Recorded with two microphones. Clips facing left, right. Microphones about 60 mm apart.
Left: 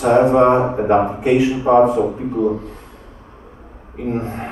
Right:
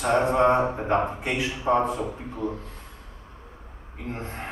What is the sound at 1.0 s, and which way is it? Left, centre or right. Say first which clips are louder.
A man's voice: left 12 dB; centre.